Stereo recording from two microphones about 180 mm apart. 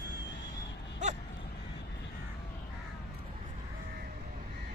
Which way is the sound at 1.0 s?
40° right (ahead or behind).